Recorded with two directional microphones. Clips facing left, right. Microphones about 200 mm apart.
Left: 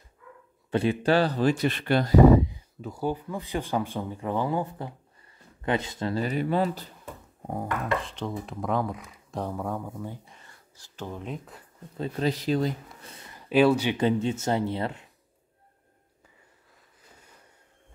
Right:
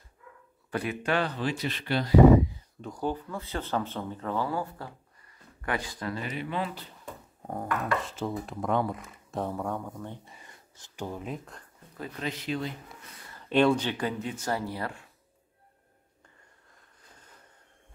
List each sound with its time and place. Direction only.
0.7 s speech: 25° left (ahead or behind); by 2.1 s 50° left (ahead or behind)
2.8 s speech: 5° left (ahead or behind); by 6.9 s 40° left (ahead or behind)
8.0 s speech: 5° right (ahead or behind)
10.3 s speech: 15° right (ahead or behind); by 11.6 s centre (ahead or behind)
12.0 s speech: 35° left (ahead or behind)
13.1 s a sound: 20° left (ahead or behind)
13.4 s speech: 5° left (ahead or behind)
13.9 s speech: 25° left (ahead or behind)